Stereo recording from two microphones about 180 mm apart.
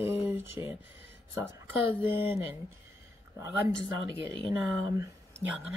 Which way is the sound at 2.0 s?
10° right (ahead or behind).